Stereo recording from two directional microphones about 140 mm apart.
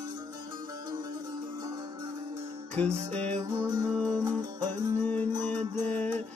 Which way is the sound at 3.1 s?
10° left (ahead or behind).